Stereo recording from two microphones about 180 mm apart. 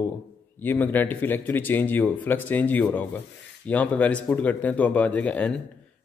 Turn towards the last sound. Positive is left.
turn(degrees=5)  # may be behind; listen again after turning